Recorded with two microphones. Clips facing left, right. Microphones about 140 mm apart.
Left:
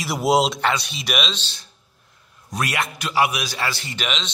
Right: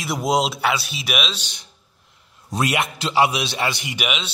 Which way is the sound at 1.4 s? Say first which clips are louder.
Left 1 dB; 15° right (ahead or behind).